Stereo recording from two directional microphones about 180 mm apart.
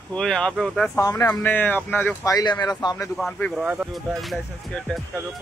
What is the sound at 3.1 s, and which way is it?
Speech, 5° left (ahead or behind).